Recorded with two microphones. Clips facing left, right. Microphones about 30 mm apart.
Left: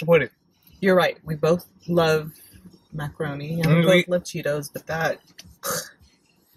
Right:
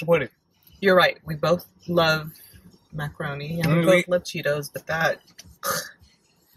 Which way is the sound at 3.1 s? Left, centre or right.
Right.